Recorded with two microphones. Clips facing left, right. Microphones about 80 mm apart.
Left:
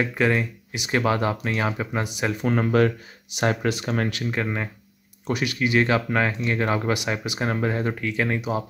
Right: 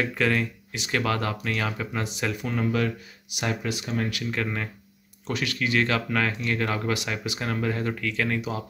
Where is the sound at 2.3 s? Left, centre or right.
Left.